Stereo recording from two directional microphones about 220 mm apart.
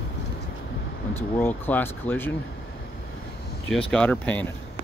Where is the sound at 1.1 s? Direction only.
10° left (ahead or behind).